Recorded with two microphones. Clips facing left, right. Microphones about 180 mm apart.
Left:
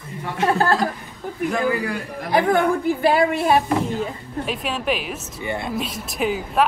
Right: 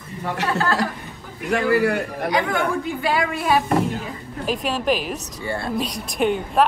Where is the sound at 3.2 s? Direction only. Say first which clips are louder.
Left 3 dB; 30° left (ahead or behind).